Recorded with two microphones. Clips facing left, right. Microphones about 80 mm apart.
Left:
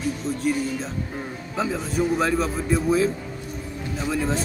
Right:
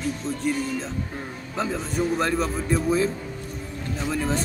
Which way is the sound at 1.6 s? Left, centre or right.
Centre.